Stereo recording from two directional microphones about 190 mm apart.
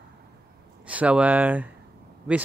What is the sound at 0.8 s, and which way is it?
Speech, 5° right (ahead or behind).